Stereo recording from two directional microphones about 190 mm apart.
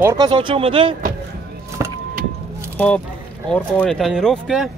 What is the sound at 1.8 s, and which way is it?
Vehicle, 15° right (ahead or behind).